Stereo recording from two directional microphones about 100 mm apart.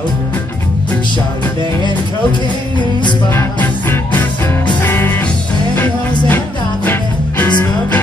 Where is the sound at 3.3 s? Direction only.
20° left (ahead or behind).